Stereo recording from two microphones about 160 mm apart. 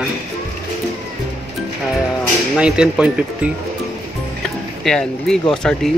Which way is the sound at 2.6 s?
5° right (ahead or behind).